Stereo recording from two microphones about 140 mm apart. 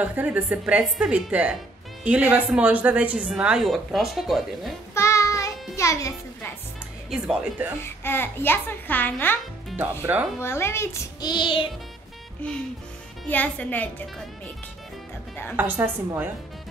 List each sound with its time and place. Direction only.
0.0 s speech: 10° right (ahead or behind)
4.9 s child singing: 20° left (ahead or behind)
5.8 s music: 20° left (ahead or behind)
7.1 s speech: 5° right (ahead or behind)
7.8 s a child's voice: 15° left (ahead or behind)
10.1 s speech: 15° right (ahead or behind)
10.4 s a child's voice: 20° left (ahead or behind); by 11.6 s 35° left (ahead or behind)
13.3 s a child's voice: 10° left (ahead or behind)
15.5 s speech: 15° right (ahead or behind)